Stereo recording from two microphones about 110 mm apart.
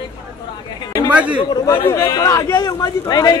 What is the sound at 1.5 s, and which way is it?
A man's voice, 40° left (ahead or behind).